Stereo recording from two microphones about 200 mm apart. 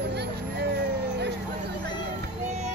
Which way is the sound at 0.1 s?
55° right (ahead or behind).